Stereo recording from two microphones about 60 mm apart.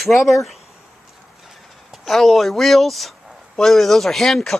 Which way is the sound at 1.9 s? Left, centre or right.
Centre.